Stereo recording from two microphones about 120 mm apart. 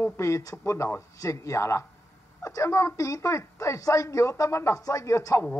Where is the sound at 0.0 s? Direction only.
25° left (ahead or behind).